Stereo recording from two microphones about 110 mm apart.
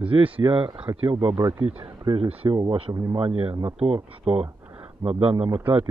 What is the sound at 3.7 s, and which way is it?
Speech, 60° right (ahead or behind).